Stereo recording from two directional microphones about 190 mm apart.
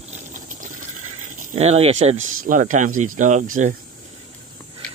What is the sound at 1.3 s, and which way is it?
Speech, 35° right (ahead or behind).